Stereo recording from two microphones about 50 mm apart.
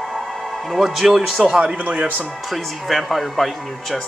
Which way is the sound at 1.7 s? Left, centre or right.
Right.